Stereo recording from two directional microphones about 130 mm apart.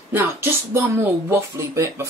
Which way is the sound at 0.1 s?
20° right (ahead or behind).